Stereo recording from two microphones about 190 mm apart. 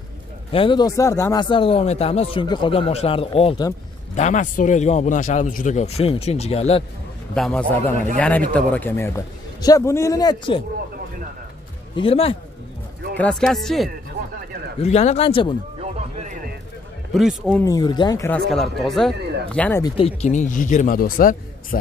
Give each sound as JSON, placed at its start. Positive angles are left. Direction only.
{"t": 0.5, "sound": "a man's voice", "side_deg": 25}
{"t": 7.3, "sound": "a man's voice", "side_deg": 5}
{"t": 11.9, "sound": "speech", "side_deg": 30}
{"t": 13.2, "sound": "speech", "side_deg": 5}
{"t": 14.8, "sound": "a man's voice", "side_deg": 35}
{"t": 15.8, "sound": "a sound", "side_deg": -35}
{"t": 17.1, "sound": "speech", "side_deg": 0}
{"t": 17.6, "sound": "a man's voice", "side_deg": 20}
{"t": 18.5, "sound": "a man's voice", "side_deg": 0}
{"t": 19.8, "sound": "a man's voice", "side_deg": 30}